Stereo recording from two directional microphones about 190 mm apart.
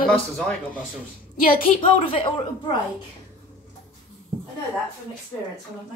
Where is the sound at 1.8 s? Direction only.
30° left (ahead or behind).